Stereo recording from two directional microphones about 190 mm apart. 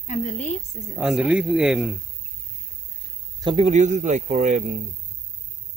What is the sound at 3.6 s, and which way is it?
Speech, 40° right (ahead or behind).